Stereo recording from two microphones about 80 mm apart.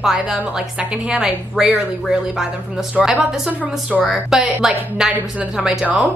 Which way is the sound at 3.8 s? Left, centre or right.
Centre.